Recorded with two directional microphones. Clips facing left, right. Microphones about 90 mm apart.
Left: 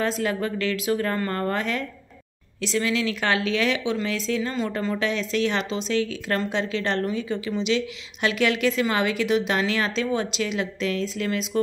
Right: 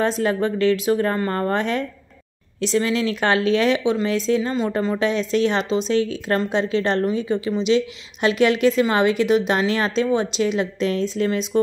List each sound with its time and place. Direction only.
0.0 s speech: 30° right (ahead or behind)